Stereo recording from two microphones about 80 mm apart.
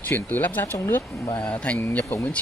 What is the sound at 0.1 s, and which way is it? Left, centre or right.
Speech, left.